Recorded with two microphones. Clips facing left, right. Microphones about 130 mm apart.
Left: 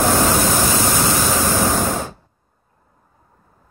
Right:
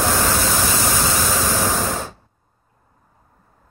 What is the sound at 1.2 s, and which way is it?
Waves, 15° left (ahead or behind).